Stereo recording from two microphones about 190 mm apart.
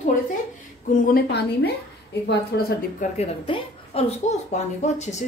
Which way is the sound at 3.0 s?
35° left (ahead or behind).